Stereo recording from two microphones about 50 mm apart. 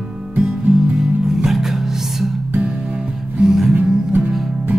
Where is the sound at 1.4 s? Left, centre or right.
Centre.